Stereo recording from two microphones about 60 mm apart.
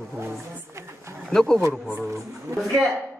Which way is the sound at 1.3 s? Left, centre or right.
Centre.